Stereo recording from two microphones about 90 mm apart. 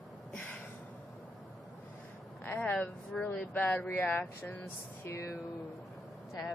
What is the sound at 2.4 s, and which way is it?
Speech, 15° left (ahead or behind).